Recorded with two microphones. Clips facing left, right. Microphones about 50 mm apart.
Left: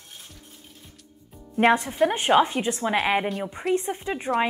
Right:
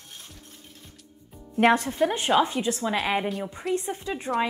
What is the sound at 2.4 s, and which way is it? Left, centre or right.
A woman's voice, left.